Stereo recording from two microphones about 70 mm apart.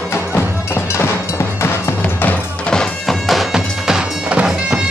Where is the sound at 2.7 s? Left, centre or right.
Centre.